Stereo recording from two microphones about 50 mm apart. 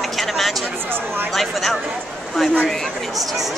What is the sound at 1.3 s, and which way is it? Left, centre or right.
A man's voice, centre.